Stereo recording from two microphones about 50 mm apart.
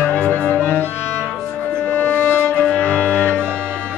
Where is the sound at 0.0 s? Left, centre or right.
Left.